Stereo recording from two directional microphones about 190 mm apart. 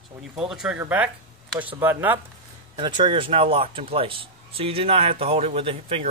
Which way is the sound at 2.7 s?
25° right (ahead or behind).